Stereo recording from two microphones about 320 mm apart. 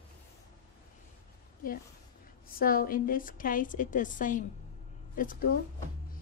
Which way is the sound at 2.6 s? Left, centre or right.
Left.